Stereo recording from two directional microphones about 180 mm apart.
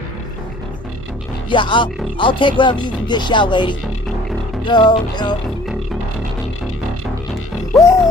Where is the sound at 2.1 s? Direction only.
25° left (ahead or behind).